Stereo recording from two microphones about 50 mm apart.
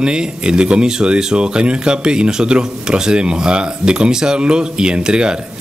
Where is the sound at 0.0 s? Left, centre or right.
Centre.